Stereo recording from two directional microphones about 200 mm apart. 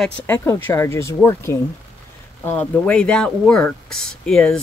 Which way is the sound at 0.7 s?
10° left (ahead or behind).